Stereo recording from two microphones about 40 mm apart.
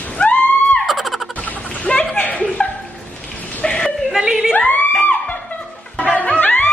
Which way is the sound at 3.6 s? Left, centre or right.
Left.